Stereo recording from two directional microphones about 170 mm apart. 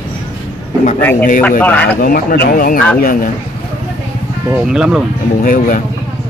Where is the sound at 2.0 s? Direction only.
60° left (ahead or behind).